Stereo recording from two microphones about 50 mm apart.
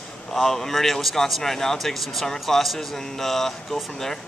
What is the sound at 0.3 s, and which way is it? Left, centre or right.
Speech, centre.